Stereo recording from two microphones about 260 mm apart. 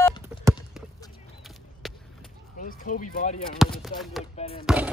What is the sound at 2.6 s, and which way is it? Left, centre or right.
Speech, left.